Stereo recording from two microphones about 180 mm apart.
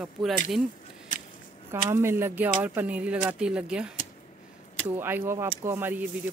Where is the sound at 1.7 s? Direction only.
15° right (ahead or behind).